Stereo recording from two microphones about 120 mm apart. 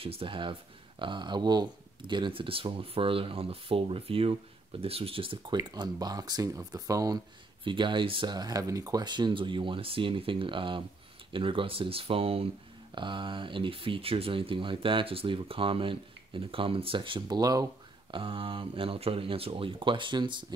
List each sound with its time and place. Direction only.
0.0 s speech: 50° right (ahead or behind)
5.8 s speech: 35° right (ahead or behind)
7.6 s speech: 45° right (ahead or behind)
12.9 s speech: 40° right (ahead or behind)
17.4 s speech: 30° right (ahead or behind)
18.1 s speech: 50° right (ahead or behind)